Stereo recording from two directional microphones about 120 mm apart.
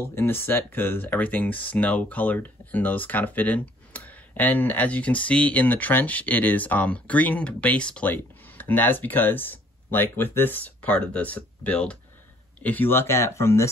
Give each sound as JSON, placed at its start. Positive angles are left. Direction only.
{"t": 0.0, "sound": "speech", "side_deg": 20}